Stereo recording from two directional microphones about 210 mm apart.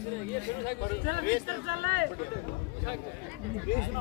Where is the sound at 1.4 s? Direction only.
45° right (ahead or behind).